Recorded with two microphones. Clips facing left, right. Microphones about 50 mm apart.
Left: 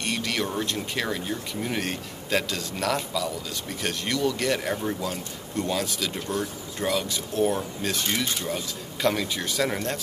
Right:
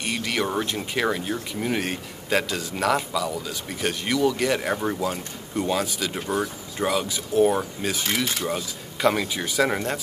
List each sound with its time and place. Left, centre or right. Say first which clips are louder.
0.0 s a sound: right 2 dB; centre
0.7 s speech: right 4 dB; centre
1.8 s speech: right 2 dB; centre
9.0 s speech: right 3 dB; centre